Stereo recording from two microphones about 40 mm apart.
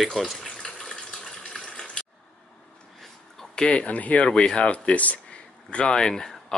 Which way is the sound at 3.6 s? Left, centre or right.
Left.